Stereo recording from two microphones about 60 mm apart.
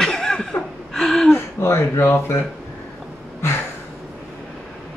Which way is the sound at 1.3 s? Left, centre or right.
Left.